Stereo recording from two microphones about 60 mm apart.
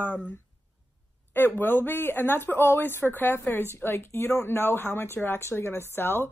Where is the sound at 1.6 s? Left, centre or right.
Left.